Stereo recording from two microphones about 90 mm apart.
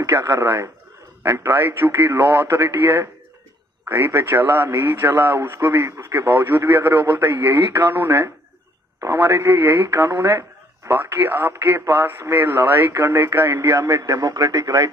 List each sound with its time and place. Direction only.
0.1 s speech: 30° right (ahead or behind)